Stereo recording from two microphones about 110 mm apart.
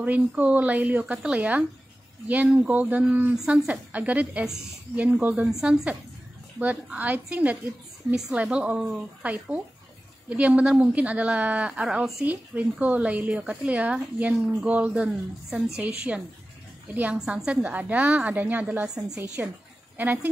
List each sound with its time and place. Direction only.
0.0 s a woman's voice: 15° right (ahead or behind)